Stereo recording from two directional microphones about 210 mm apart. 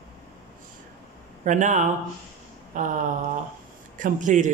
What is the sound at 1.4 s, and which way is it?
A man's voice, 35° right (ahead or behind).